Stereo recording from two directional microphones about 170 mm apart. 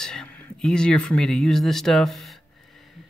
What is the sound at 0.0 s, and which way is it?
Speech, 5° left (ahead or behind).